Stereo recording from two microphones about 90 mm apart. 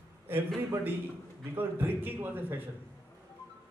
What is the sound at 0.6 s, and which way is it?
A man's voice, 20° right (ahead or behind).